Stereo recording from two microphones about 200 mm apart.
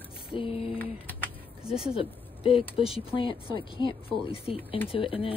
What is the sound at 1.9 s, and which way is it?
Speech, 25° left (ahead or behind).